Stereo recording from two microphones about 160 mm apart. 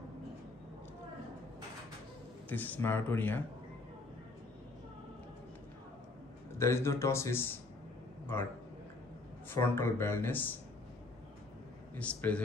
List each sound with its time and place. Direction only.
2.5 s speech: 10° left (ahead or behind)
6.6 s speech: 15° left (ahead or behind)
9.5 s speech: 15° left (ahead or behind)
11.9 s speech: 10° left (ahead or behind)